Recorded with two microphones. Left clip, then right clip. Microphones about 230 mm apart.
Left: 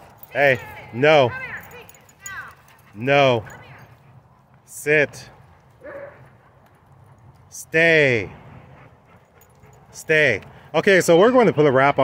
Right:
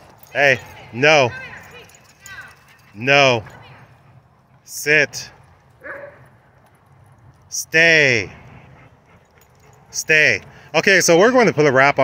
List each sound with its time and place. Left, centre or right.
0.3 s speech: centre
1.3 s basketball bounce: right
3.0 s speech: centre
4.8 s speech: centre
7.7 s speech: centre
9.9 s speech: centre